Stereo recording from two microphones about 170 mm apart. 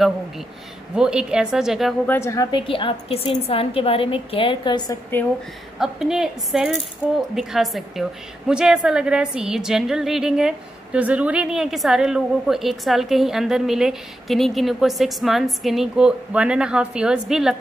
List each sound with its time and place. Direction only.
0.9 s a woman's voice: 5° right (ahead or behind)
2.0 s a woman's voice: 15° left (ahead or behind)
2.5 s a woman's voice: 30° left (ahead or behind)
5.8 s a woman's voice: 5° right (ahead or behind)